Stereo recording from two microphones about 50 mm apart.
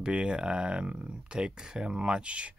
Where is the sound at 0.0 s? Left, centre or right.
Centre.